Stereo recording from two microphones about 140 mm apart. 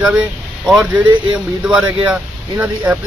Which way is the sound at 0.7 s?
5° right (ahead or behind).